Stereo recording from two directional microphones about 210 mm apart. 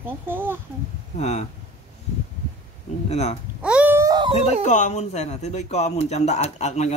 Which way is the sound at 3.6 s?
5° right (ahead or behind).